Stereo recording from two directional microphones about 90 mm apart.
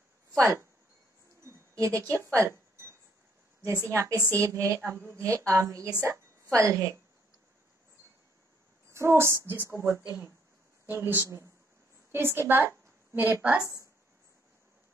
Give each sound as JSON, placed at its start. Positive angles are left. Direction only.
{"t": 1.4, "sound": "a sound", "side_deg": -35}
{"t": 2.0, "sound": "a woman's voice", "side_deg": -30}
{"t": 8.9, "sound": "a woman's voice", "side_deg": -30}